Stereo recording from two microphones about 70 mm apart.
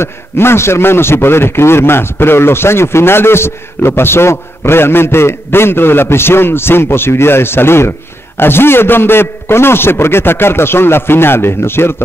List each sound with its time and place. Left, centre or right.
0.0 s a man's voice: left